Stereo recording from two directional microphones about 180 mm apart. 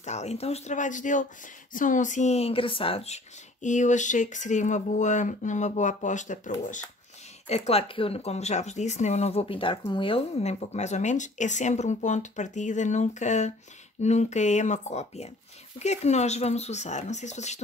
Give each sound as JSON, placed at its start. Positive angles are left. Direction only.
{"t": 0.0, "sound": "speech", "side_deg": 40}